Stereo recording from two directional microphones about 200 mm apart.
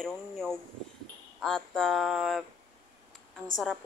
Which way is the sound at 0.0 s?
5° left (ahead or behind).